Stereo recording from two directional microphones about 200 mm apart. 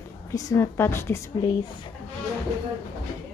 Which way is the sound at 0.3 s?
15° left (ahead or behind).